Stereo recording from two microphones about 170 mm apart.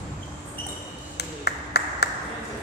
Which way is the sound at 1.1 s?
75° left (ahead or behind).